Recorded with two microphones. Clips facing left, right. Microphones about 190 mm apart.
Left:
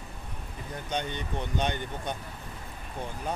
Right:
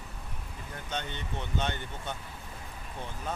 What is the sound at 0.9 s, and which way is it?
Speech, 15° left (ahead or behind).